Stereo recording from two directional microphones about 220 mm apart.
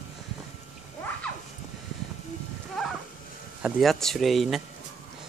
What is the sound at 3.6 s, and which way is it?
Speech, centre (ahead or behind).